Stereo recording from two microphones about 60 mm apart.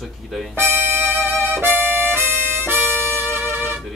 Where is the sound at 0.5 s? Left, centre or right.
Right.